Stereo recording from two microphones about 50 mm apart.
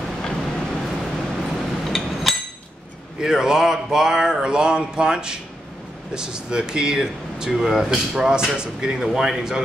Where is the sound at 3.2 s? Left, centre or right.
Centre.